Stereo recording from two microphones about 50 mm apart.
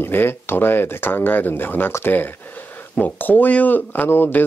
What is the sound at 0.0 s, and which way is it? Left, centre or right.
Speech, left.